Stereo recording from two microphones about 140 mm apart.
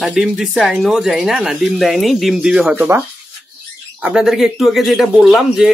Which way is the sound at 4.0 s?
5° right (ahead or behind).